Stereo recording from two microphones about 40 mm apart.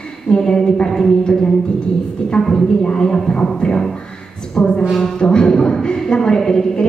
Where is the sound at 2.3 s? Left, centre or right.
Left.